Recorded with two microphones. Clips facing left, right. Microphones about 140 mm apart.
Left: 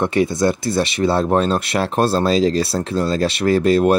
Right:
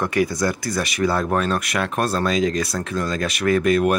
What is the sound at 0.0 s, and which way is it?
Speech, 25° left (ahead or behind).